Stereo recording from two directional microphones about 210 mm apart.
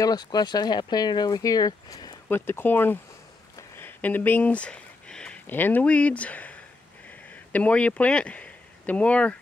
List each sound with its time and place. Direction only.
0.0 s speech: 20° left (ahead or behind)
3.5 s a sound: 10° left (ahead or behind)
7.1 s speech: 5° left (ahead or behind)